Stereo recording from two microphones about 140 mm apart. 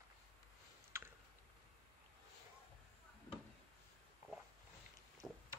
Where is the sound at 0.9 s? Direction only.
20° right (ahead or behind).